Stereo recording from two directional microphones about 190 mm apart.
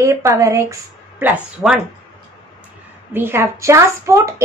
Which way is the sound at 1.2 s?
5° right (ahead or behind).